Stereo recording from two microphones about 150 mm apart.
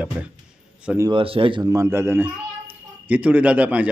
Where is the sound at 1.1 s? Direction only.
35° right (ahead or behind).